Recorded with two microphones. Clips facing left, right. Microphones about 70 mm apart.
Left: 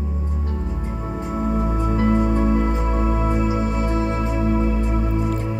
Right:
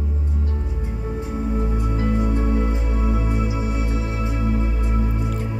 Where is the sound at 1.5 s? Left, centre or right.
Left.